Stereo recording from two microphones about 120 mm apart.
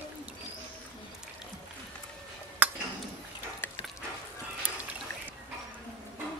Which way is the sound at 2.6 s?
15° right (ahead or behind).